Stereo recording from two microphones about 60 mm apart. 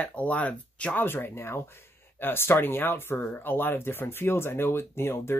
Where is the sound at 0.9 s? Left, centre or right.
Left.